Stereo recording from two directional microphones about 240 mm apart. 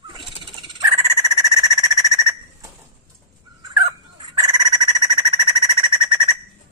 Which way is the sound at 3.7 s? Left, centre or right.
Centre.